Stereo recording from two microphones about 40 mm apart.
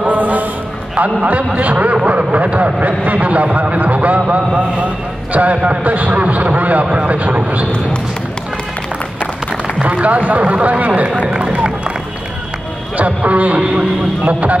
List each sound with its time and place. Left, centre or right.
0.0 s a sound: right
0.9 s speech: right
9.8 s speech: right
11.2 s speech: right
12.9 s speech: right